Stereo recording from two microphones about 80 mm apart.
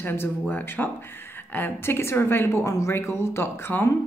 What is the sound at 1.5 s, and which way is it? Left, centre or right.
Speech, left.